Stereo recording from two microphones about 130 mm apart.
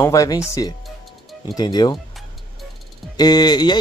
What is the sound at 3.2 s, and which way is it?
Speech, 30° left (ahead or behind).